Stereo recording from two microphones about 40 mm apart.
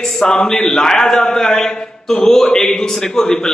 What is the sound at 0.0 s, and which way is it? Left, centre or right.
A man's voice, centre.